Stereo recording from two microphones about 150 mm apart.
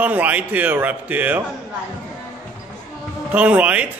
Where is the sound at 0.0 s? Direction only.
10° right (ahead or behind).